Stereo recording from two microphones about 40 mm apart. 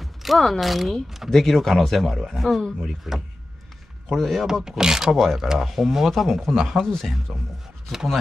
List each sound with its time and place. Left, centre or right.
0.0 s speech: centre
1.3 s speech: centre
4.6 s speech: centre
5.1 s speech: centre
5.4 s speech: centre
7.3 s speech: centre
7.9 s speech: centre